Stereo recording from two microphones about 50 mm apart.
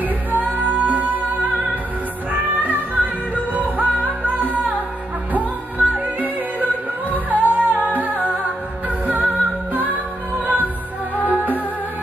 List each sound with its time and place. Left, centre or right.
0.0 s music: right
3.5 s music: right